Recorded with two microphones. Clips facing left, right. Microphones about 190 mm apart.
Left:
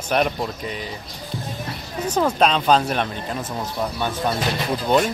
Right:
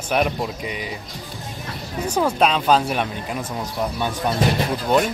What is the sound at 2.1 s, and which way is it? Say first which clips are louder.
Speech: even; 10° right (ahead or behind).